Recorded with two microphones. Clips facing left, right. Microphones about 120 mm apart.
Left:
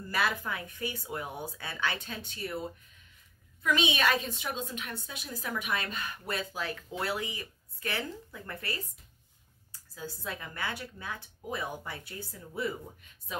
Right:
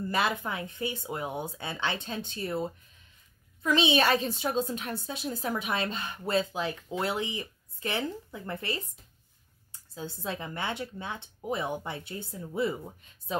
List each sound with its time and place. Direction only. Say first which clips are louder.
0.1 s a woman's voice: right 1 dB; 25° right (ahead or behind)